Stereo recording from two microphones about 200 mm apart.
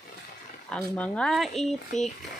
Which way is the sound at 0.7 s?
5° left (ahead or behind).